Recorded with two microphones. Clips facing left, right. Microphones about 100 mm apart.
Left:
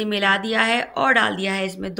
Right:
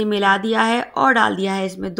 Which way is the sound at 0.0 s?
30° right (ahead or behind).